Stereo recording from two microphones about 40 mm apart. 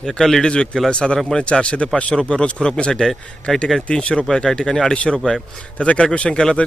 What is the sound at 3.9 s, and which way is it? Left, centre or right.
A man's voice, left.